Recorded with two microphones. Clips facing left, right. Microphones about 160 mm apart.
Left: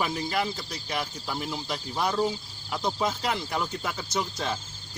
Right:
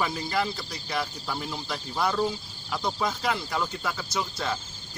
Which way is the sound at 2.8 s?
15° left (ahead or behind).